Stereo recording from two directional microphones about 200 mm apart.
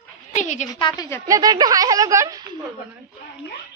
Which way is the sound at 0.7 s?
20° left (ahead or behind).